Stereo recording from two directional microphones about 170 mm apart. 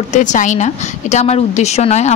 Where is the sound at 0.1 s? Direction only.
45° left (ahead or behind).